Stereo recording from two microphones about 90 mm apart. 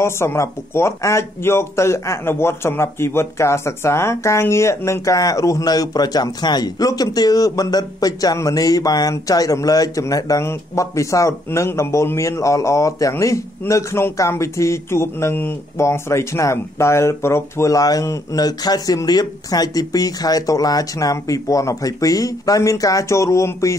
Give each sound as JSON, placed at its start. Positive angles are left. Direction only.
{"t": 0.0, "sound": "speech", "side_deg": 30}